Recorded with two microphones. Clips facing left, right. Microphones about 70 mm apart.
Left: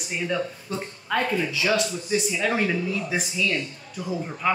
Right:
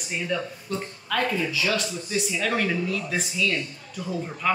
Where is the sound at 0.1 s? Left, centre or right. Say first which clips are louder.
Left 1 dB; centre.